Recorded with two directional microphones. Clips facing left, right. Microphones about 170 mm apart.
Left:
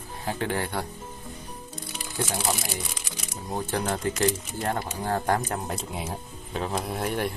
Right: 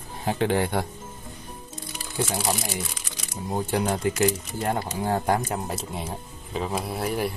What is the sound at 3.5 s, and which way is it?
Speech, 10° right (ahead or behind).